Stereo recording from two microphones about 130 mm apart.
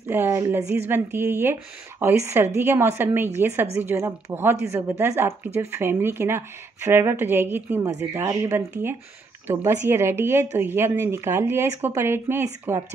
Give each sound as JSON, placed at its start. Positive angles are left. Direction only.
{"t": 0.1, "sound": "a woman's voice", "side_deg": -20}